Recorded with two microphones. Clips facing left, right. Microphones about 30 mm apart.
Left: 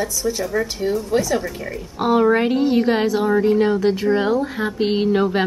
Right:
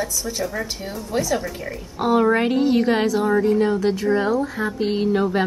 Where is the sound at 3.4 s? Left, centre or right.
Left.